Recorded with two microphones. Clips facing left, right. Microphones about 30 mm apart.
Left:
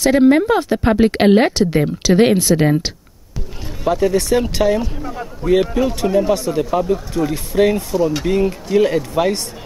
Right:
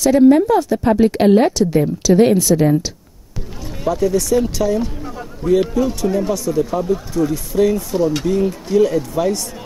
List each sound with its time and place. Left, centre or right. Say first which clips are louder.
0.0 s speech: right 1 dB; left
3.9 s speech: left 1 dB; left
5.0 s speech: left 1 dB; left
6.3 s speech: left 1 dB; left
8.0 s speech: right 1 dB; centre
8.3 s speech: left 1 dB; left